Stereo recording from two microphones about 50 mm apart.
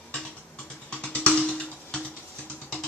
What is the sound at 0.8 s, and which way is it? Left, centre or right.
Music, left.